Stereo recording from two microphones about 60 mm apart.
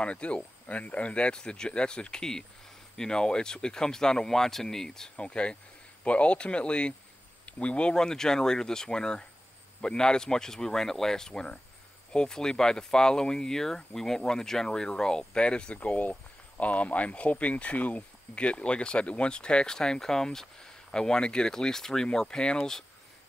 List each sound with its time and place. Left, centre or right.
0.0 s speech: centre